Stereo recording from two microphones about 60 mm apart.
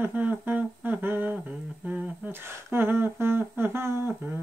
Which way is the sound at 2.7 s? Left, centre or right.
Right.